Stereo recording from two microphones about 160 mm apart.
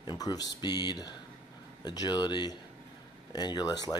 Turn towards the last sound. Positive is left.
turn(degrees=25)  # may be behind; listen again after turning